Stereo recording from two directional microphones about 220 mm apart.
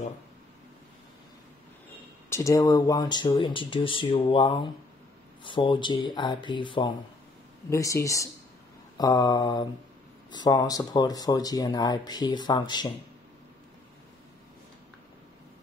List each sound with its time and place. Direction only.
2.2 s speech: 15° left (ahead or behind)